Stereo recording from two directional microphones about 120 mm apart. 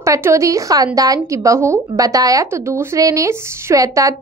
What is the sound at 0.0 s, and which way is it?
A woman's voice, 25° right (ahead or behind).